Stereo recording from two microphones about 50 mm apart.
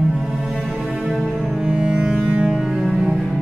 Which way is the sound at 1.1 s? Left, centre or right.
Centre.